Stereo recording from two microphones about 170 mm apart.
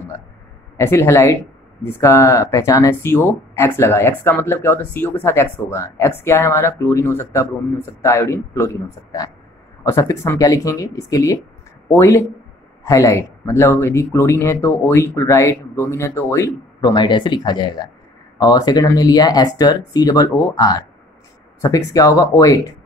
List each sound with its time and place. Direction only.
0.7 s speech: 15° left (ahead or behind)